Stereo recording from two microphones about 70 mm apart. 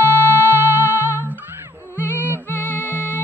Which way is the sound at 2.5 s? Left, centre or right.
Left.